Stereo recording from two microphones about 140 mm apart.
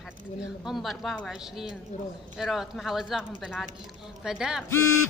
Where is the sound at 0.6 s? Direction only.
Centre (ahead or behind).